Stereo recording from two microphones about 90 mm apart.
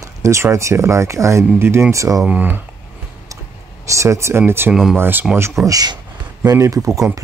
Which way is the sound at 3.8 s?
35° right (ahead or behind).